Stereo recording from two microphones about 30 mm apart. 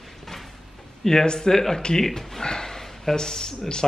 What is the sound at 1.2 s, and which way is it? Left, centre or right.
Speech, left.